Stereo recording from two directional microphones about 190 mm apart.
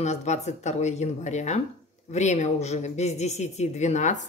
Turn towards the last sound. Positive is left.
turn(degrees=40)  # may be behind; listen again after turning